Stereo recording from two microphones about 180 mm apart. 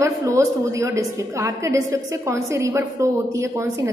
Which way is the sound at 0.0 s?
15° right (ahead or behind).